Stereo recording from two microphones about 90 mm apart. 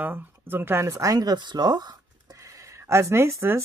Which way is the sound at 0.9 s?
40° right (ahead or behind).